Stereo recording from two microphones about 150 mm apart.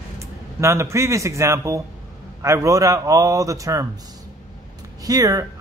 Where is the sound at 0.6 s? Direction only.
20° right (ahead or behind).